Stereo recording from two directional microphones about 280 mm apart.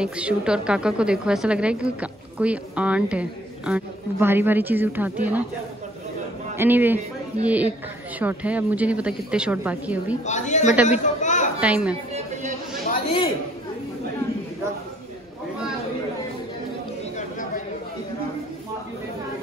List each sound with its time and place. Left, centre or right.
0.0 s a woman's voice: centre
6.5 s a man's voice: centre
10.2 s a woman's voice: left
10.9 s chatter: left
11.6 s a woman's voice: centre
12.9 s chatter: centre